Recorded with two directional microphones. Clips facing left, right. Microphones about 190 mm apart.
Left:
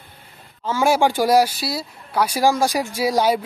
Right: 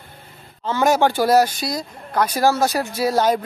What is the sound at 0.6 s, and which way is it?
Speech, 10° left (ahead or behind).